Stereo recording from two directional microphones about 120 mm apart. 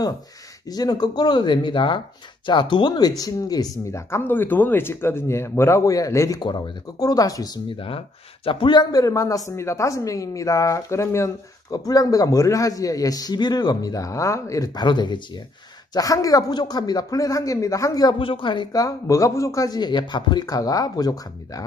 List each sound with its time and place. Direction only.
0.7 s a woman's voice: 35° left (ahead or behind)
6.4 s a woman's voice: 40° left (ahead or behind)
18.2 s speech: 45° left (ahead or behind)